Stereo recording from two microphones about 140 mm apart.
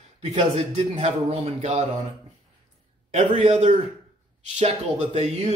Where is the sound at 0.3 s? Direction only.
50° right (ahead or behind).